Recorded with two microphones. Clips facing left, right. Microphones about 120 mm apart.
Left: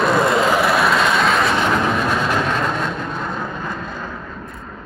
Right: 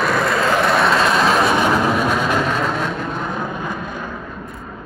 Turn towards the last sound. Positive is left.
turn(degrees=-15)  # may be behind; listen again after turning